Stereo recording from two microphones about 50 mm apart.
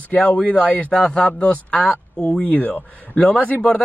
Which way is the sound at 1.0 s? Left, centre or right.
Left.